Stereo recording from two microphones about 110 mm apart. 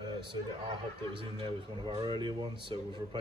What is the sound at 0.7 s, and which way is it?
Speech, 50° right (ahead or behind).